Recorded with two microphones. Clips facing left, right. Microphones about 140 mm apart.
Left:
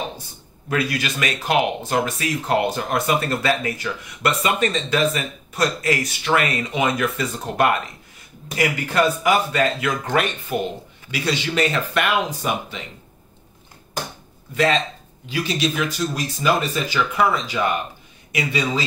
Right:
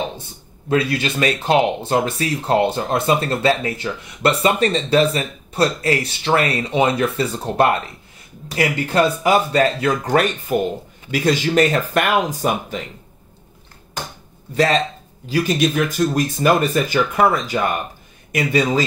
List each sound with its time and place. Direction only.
0.7 s speech: 25° right (ahead or behind); by 12.8 s 45° right (ahead or behind)
14.5 s speech: 35° right (ahead or behind)